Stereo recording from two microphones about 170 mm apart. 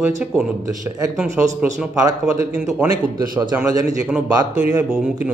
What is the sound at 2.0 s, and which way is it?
Speech, 20° right (ahead or behind).